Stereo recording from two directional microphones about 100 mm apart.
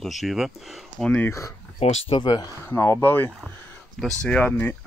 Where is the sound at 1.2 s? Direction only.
30° left (ahead or behind).